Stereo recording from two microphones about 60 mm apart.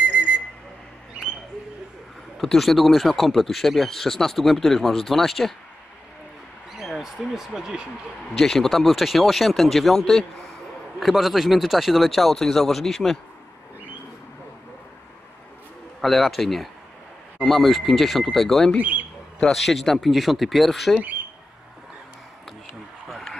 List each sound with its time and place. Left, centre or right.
0.0 s whistle: right
2.3 s speech: centre
6.8 s speech: centre
8.4 s speech: centre
16.0 s speech: centre
18.8 s speech: right
19.4 s speech: centre
23.0 s a sound: centre